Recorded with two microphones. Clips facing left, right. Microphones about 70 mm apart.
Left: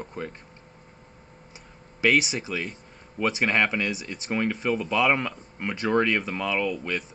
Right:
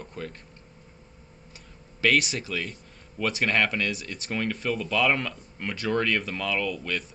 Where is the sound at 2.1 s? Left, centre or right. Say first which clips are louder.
Left 1 dB; centre.